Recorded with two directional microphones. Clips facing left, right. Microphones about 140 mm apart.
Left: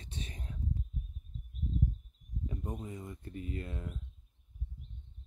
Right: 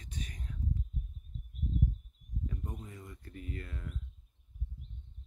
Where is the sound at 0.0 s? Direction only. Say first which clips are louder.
Even; 25° left (ahead or behind).